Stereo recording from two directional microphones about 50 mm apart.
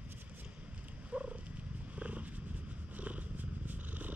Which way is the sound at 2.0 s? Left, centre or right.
Right.